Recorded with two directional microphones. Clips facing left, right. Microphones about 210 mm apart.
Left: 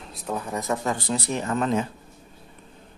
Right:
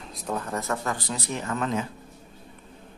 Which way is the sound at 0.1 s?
10° left (ahead or behind).